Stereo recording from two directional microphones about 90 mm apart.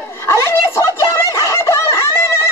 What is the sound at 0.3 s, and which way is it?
Snicker, 30° left (ahead or behind).